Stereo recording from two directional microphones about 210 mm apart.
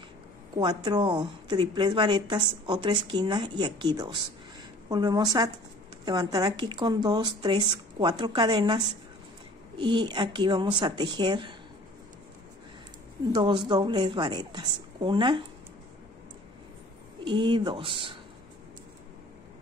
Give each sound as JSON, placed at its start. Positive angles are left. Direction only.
{"t": 0.6, "sound": "a woman's voice", "side_deg": -20}
{"t": 13.3, "sound": "speech", "side_deg": -20}
{"t": 17.2, "sound": "speech", "side_deg": -20}